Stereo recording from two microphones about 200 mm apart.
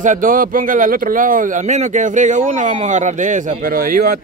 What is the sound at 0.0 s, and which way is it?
Speech, 40° right (ahead or behind).